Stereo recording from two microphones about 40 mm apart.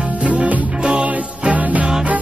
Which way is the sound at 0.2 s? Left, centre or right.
Right.